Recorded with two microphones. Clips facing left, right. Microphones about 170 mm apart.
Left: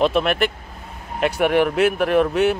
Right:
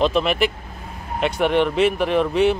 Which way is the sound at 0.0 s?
Centre (ahead or behind).